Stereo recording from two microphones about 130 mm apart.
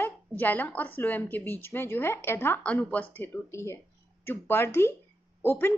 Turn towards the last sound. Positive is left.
turn(degrees=15)  # may be behind; listen again after turning